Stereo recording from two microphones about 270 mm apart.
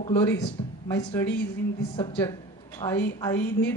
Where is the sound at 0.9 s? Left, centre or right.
Centre.